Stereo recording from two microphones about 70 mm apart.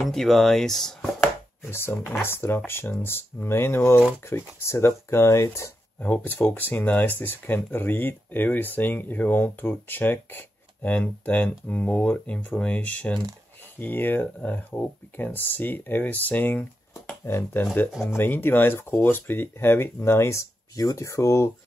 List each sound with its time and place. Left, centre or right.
0.0 s speech: centre
1.6 s speech: left
2.0 s speech: centre
2.2 s speech: left
5.9 s speech: left
17.2 s speech: left